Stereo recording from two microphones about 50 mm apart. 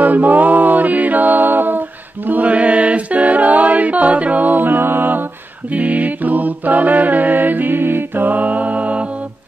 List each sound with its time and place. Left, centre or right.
0.0 s music: right
2.2 s mantra: right
5.7 s mantra: right